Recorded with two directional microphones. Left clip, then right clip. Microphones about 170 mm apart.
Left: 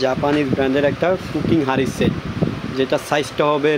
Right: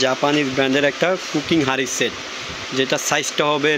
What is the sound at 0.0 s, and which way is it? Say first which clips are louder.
Speech: even; centre (ahead or behind).